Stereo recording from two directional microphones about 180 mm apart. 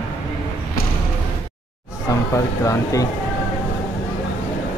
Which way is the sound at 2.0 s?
20° left (ahead or behind).